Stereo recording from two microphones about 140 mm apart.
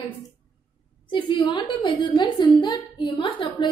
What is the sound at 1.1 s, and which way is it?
A woman's voice, 35° left (ahead or behind).